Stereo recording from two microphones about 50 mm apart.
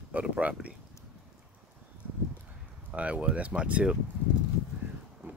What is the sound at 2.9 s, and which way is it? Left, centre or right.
Speech, right.